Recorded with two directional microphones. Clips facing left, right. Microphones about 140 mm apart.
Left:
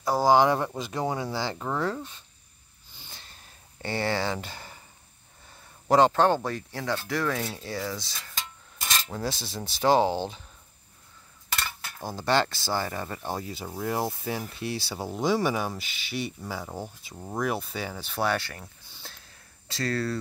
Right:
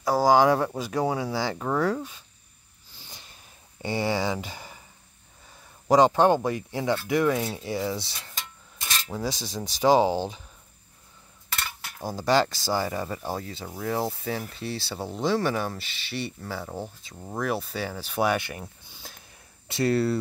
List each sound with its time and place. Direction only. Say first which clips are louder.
0.0 s speech: right 1 dB; 10° right (ahead or behind)
3.8 s speech: right 2 dB; 15° right (ahead or behind)
5.9 s speech: right 2 dB; 10° right (ahead or behind)
9.1 s speech: right 2 dB; 10° right (ahead or behind)
11.8 s speech: right 3 dB; 10° right (ahead or behind)